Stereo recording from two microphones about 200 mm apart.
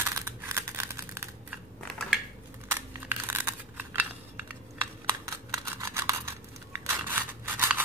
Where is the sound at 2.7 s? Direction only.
10° right (ahead or behind).